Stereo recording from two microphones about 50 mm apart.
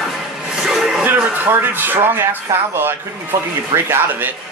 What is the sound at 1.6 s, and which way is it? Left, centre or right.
Speech, right.